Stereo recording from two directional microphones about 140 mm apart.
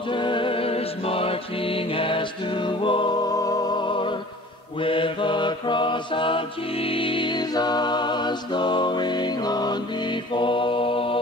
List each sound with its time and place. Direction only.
0.1 s music: 35° left (ahead or behind)
4.8 s mantra: 35° left (ahead or behind)